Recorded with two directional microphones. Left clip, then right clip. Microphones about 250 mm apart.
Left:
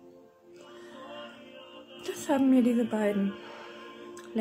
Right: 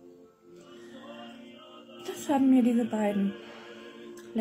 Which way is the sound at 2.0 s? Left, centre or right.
Centre.